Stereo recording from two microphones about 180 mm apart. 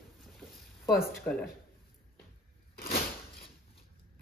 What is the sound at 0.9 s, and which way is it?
Speech, 5° left (ahead or behind).